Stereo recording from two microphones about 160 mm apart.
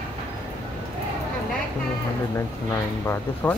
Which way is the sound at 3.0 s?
15° left (ahead or behind).